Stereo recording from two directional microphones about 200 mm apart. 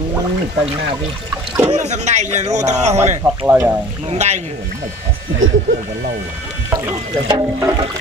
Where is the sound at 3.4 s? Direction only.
10° right (ahead or behind).